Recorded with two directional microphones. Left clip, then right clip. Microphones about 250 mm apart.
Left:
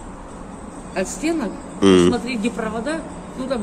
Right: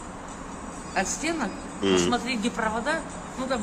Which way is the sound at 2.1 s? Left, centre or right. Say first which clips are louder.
Left 4 dB; centre.